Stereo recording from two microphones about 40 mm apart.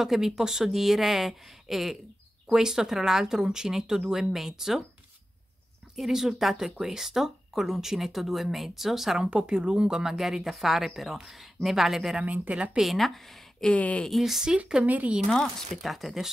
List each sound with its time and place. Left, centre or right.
0.0 s speech: centre
5.9 s speech: centre
9.2 s speech: right
10.1 s speech: centre
12.2 s speech: right
12.8 s speech: centre
13.7 s speech: left
14.1 s speech: centre
14.8 s speech: right
15.4 s speech: centre